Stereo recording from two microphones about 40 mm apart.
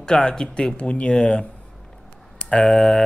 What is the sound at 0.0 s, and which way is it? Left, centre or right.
Speech, centre.